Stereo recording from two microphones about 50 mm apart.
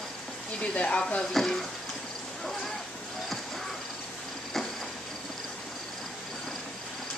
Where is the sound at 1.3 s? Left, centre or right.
Centre.